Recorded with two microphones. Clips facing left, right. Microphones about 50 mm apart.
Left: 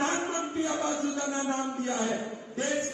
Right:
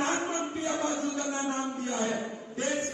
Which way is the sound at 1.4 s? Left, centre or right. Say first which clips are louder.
Left 1 dB; right.